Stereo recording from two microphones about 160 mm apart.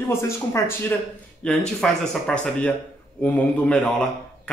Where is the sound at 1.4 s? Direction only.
5° left (ahead or behind).